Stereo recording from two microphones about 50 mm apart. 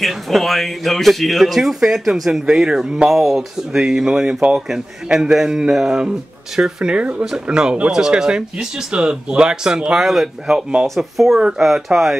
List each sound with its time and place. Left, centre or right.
0.0 s speech: centre
4.6 s speech: centre